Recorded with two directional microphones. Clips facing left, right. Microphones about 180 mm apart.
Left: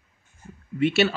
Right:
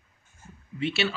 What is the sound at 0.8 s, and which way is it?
Speech, 50° left (ahead or behind).